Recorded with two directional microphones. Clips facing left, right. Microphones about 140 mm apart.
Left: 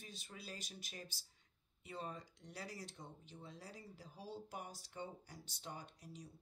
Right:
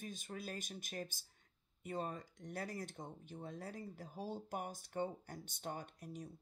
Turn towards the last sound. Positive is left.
turn(degrees=-50)  # may be behind; listen again after turning